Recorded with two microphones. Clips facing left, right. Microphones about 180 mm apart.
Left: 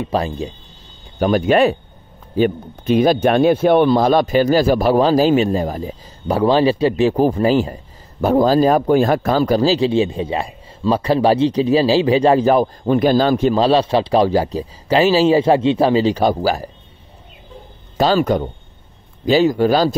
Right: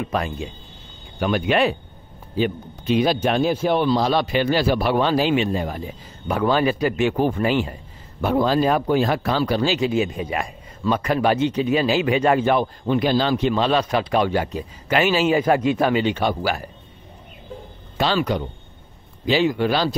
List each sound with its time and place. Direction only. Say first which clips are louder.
0.0 s a man's voice: left 5 dB; 30° left (ahead or behind)
17.9 s a man's voice: left 6 dB; 40° left (ahead or behind)